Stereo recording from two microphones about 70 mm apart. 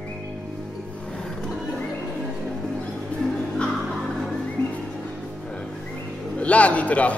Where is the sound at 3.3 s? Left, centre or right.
Centre.